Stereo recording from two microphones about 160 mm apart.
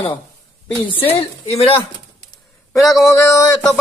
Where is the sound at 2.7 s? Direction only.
20° left (ahead or behind).